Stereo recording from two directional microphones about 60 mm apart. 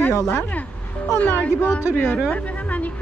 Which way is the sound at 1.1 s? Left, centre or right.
Left.